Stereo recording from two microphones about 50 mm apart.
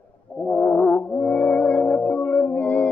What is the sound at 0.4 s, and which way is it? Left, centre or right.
Music, centre.